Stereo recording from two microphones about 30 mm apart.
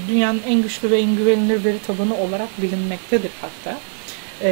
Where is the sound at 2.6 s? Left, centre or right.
Centre.